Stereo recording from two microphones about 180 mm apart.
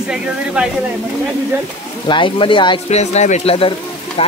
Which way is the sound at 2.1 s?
30° left (ahead or behind).